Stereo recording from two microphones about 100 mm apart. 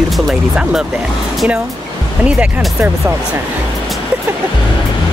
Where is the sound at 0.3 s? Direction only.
5° right (ahead or behind).